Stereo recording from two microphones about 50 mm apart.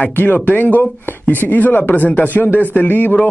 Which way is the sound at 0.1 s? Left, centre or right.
Left.